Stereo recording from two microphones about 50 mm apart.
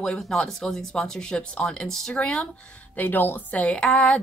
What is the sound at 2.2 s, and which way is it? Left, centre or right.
Speech, left.